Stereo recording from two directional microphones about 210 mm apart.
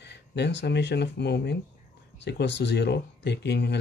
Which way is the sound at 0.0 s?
55° left (ahead or behind).